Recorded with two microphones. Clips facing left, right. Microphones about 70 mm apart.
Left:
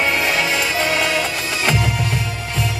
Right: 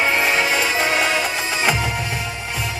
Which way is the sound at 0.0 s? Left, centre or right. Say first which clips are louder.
Even; right.